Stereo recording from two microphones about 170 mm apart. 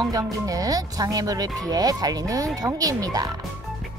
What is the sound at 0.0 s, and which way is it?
Speech, 20° right (ahead or behind).